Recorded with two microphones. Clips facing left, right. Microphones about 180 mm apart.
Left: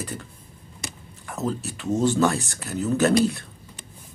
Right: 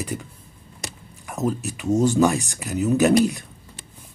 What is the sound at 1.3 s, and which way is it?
Speech, 15° right (ahead or behind).